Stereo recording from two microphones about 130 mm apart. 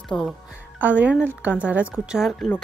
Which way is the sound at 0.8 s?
10° right (ahead or behind).